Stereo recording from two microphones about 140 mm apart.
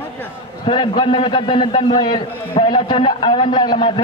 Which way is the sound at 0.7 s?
35° left (ahead or behind).